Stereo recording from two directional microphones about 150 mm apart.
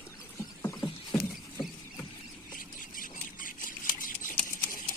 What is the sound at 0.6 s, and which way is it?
Rowboat, 25° left (ahead or behind).